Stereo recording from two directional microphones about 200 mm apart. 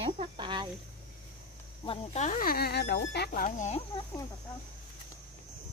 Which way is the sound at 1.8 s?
35° left (ahead or behind).